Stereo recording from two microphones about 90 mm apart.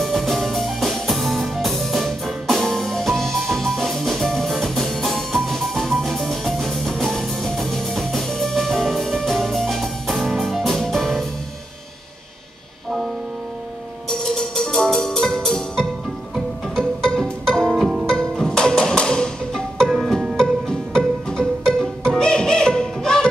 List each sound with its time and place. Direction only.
0.0 s music: centre (ahead or behind)
14.0 s music: 5° left (ahead or behind)
19.9 s music: 5° right (ahead or behind)
20.3 s music: 10° left (ahead or behind)